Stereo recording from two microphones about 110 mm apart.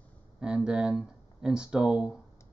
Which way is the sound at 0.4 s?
5° right (ahead or behind).